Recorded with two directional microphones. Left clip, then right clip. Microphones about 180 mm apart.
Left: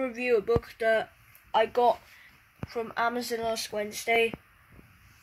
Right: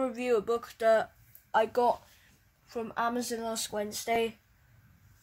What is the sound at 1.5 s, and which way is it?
Speech, 20° right (ahead or behind).